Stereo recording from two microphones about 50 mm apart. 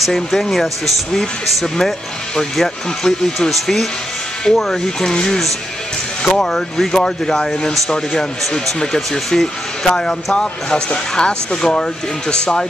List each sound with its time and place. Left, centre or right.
0.0 s speech: centre